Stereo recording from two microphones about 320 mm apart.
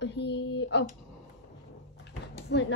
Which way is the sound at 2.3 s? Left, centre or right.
Left.